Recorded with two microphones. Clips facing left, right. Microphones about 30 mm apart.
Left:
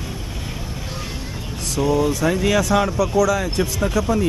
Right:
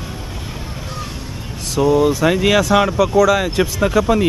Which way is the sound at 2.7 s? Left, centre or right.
Right.